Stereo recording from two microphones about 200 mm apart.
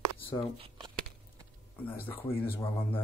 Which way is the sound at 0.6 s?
25° right (ahead or behind).